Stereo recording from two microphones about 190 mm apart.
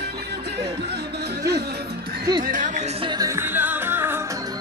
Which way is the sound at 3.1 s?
20° right (ahead or behind).